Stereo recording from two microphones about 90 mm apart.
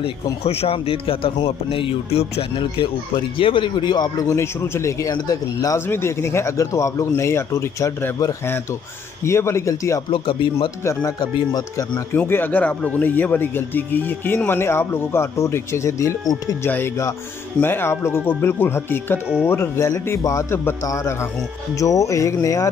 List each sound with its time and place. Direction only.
0.4 s speech: 90° left
2.5 s speech: 65° left (ahead or behind); by 4.4 s 45° left (ahead or behind)
4.4 s speech: 30° left (ahead or behind)
5.1 s speech: 40° left (ahead or behind)
5.9 s speech: 30° left (ahead or behind)
10.1 s speech: 70° left (ahead or behind)
11.1 s speech: 55° left (ahead or behind)
12.1 s speech: 25° left (ahead or behind)
16.6 s speech: 20° left (ahead or behind)